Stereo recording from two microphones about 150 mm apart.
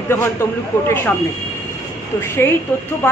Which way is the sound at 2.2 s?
15° left (ahead or behind).